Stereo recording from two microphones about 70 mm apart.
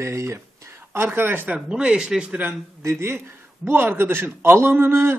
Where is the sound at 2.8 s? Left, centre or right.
Right.